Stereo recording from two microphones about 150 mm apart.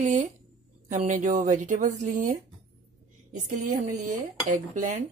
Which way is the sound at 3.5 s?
60° right (ahead or behind).